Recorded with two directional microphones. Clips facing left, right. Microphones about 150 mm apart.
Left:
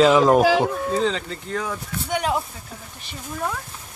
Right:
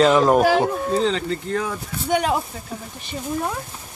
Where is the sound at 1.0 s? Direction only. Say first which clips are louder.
Right 2 dB; 60° right (ahead or behind).